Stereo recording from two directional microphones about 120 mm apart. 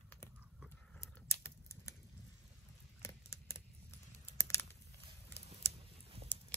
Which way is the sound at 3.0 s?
25° left (ahead or behind).